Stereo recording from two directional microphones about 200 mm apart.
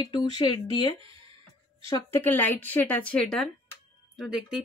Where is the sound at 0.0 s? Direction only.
25° left (ahead or behind).